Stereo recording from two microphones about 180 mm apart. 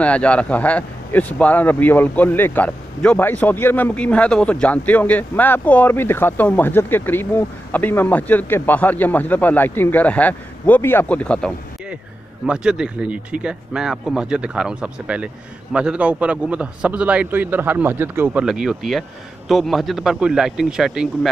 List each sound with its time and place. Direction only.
0.0 s a man's voice: 5° left (ahead or behind)